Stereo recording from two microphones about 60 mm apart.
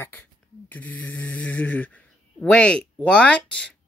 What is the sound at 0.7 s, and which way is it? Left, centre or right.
A child's voice, left.